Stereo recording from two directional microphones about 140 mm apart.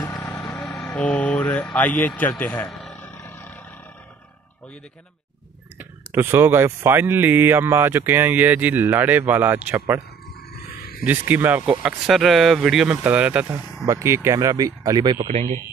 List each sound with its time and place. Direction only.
0.2 s vehicle: 20° left (ahead or behind)
0.9 s a man's voice: 10° left (ahead or behind)
2.7 s a sound: centre (ahead or behind)
3.0 s a sound: 15° left (ahead or behind)
5.8 s speech: 15° right (ahead or behind)
11.1 s speech: 15° right (ahead or behind)
11.8 s speech: centre (ahead or behind)
13.8 s speech: 20° right (ahead or behind)
15.2 s speech: 50° right (ahead or behind)